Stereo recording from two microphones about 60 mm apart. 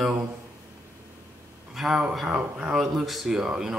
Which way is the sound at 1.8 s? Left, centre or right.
Centre.